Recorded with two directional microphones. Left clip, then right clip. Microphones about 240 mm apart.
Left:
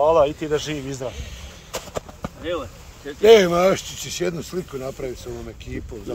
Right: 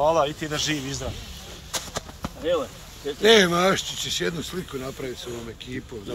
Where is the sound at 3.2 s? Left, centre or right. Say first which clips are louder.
Left 4 dB; left.